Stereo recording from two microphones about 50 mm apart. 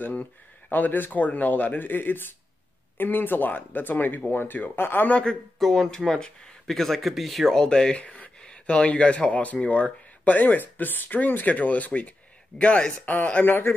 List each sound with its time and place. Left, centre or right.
0.0 s speech: left
5.1 s speech: left
5.6 s speech: centre
7.5 s speech: centre
13.5 s speech: left